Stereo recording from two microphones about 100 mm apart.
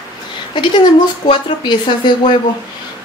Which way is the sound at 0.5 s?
50° left (ahead or behind).